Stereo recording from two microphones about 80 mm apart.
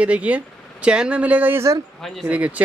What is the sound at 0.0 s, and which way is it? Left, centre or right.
Speech, centre.